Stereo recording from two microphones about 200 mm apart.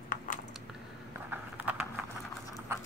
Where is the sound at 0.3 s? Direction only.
40° left (ahead or behind).